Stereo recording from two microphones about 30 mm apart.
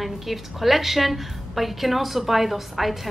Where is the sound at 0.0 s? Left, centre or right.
Centre.